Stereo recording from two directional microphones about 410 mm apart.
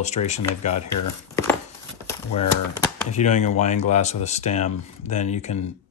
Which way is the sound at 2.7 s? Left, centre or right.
Centre.